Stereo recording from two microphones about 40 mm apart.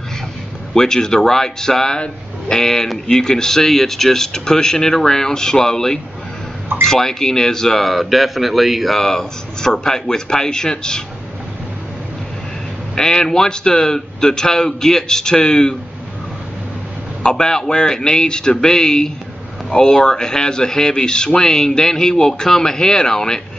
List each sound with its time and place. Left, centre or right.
0.7 s speech: centre
7.8 s speech: centre
12.9 s speech: centre
17.2 s speech: centre